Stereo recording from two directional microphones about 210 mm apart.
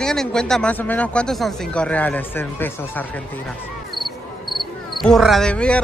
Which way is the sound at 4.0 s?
Centre (ahead or behind).